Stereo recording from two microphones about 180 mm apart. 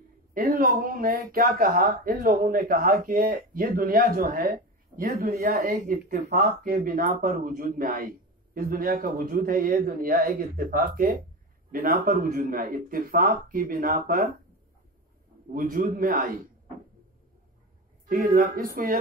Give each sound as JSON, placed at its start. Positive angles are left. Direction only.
{"t": 0.3, "sound": "speech", "side_deg": -50}
{"t": 15.5, "sound": "speech", "side_deg": -55}
{"t": 18.0, "sound": "speech", "side_deg": -50}